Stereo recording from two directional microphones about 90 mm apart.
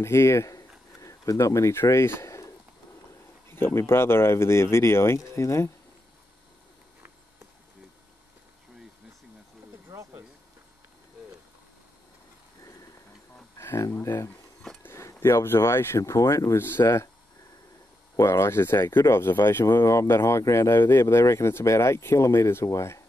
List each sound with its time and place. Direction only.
0.0 s speech: 30° left (ahead or behind)
9.8 s a sound: 35° right (ahead or behind)
13.6 s speech: 35° left (ahead or behind)
14.8 s a sound: 30° left (ahead or behind)
15.1 s speech: 25° left (ahead or behind)
18.1 s speech: 30° left (ahead or behind)